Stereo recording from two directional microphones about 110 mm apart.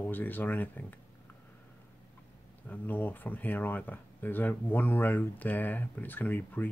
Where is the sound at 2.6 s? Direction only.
15° left (ahead or behind).